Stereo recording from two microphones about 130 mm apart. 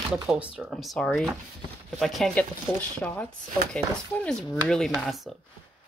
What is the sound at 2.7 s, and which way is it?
Speech, 15° left (ahead or behind).